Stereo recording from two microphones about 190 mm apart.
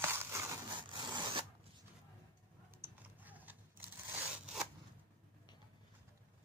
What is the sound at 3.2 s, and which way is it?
Scissors, 10° right (ahead or behind).